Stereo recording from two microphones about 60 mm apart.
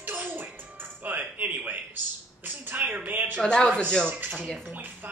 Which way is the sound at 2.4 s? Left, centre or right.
Right.